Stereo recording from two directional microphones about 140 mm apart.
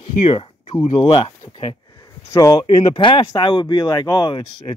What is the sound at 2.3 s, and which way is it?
Speech, 25° left (ahead or behind).